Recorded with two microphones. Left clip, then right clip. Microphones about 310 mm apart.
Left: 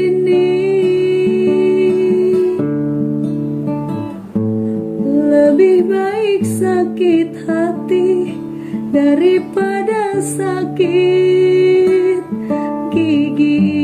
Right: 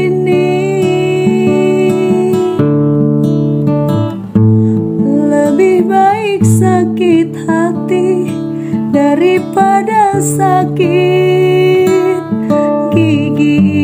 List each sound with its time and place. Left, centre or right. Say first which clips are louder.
0.0 s music: right 1 dB; centre
5.0 s music: left 1 dB; centre